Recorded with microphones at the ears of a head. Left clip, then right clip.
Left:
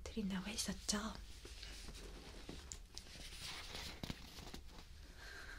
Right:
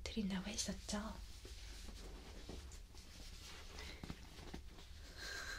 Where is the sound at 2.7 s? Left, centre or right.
Left.